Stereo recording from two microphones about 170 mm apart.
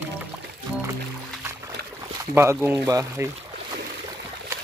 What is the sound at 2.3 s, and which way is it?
Speech, 15° right (ahead or behind).